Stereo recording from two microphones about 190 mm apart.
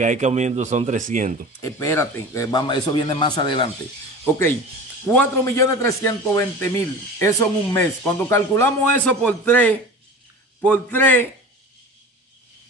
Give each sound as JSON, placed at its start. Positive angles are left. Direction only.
{"t": 0.0, "sound": "speech", "side_deg": -40}
{"t": 1.6, "sound": "a man's voice", "side_deg": 15}
{"t": 5.0, "sound": "speech", "side_deg": 10}